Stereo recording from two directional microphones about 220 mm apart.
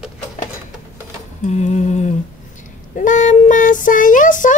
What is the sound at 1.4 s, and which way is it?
Speech, 30° left (ahead or behind).